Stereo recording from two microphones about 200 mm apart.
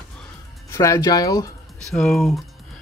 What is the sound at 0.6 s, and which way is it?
Speech, 15° left (ahead or behind).